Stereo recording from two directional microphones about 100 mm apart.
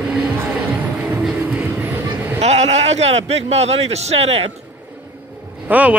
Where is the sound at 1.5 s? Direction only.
20° right (ahead or behind).